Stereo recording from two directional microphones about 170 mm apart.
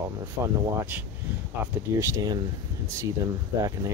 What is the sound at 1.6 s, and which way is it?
Speech, 15° right (ahead or behind).